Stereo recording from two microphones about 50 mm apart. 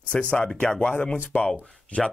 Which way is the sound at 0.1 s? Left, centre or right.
Left.